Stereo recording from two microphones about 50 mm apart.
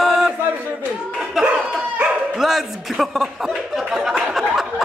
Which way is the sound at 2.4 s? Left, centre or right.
Centre.